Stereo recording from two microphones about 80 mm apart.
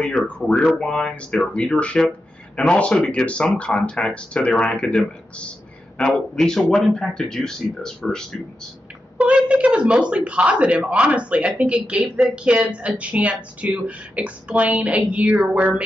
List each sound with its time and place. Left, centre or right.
0.1 s speech: centre
9.2 s speech: centre